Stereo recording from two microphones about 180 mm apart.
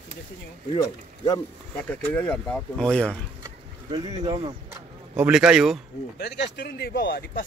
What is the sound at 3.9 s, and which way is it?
Speech, 30° right (ahead or behind).